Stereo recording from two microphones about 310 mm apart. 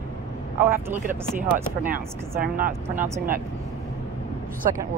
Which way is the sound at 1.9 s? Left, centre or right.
Right.